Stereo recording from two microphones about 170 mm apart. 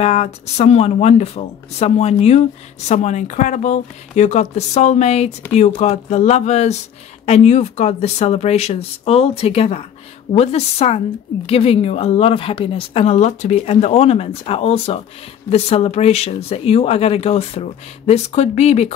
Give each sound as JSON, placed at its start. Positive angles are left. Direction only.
{"t": 0.0, "sound": "a woman's voice", "side_deg": 40}